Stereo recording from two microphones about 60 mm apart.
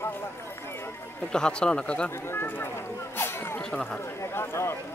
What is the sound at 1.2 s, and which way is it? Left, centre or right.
Speech, centre.